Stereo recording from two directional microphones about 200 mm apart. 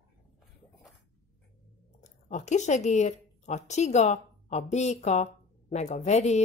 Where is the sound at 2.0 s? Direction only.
35° left (ahead or behind).